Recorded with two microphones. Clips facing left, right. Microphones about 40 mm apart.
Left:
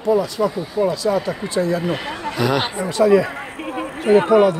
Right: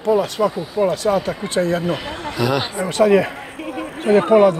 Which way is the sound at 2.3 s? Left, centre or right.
Centre.